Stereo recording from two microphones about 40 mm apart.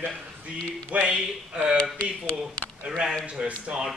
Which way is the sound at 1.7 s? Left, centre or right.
Left.